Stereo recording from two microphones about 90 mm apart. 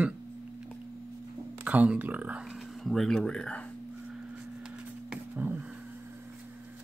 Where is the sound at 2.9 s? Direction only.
5° left (ahead or behind).